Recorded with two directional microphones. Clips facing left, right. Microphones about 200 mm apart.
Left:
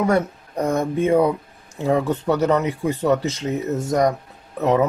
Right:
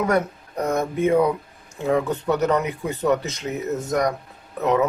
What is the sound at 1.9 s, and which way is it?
Speech, 30° left (ahead or behind).